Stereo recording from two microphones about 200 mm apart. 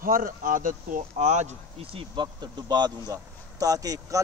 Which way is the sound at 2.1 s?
20° right (ahead or behind).